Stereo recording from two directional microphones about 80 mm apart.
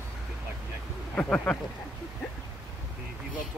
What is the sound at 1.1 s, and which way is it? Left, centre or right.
Speech, centre.